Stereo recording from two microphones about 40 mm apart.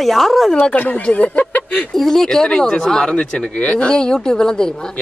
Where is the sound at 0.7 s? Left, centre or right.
Left.